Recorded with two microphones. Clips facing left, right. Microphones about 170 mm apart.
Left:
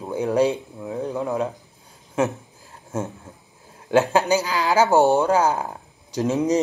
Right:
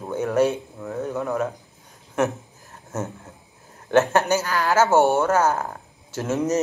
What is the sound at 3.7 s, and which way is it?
Speech, 10° left (ahead or behind).